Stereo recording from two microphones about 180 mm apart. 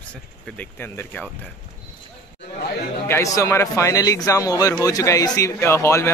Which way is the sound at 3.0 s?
15° left (ahead or behind).